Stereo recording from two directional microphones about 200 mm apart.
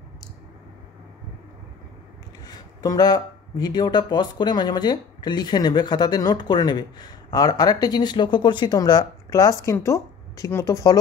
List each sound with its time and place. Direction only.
2.4 s speech: 20° left (ahead or behind)